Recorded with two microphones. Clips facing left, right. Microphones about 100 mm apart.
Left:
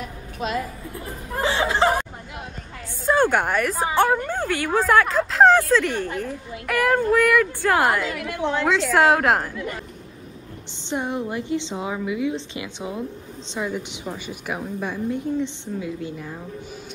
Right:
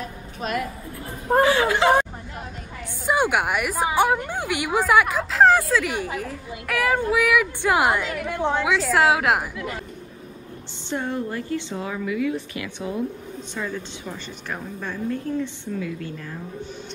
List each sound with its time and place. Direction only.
1.4 s a woman's voice: 25° left (ahead or behind)
3.1 s a woman's voice: 10° right (ahead or behind)
7.6 s a woman's voice: 15° right (ahead or behind)
8.6 s speech: centre (ahead or behind)
10.9 s a woman's voice: 20° left (ahead or behind)